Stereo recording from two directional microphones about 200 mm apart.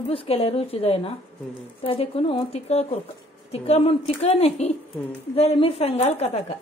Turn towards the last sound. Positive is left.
turn(degrees=30)  # may be behind; listen again after turning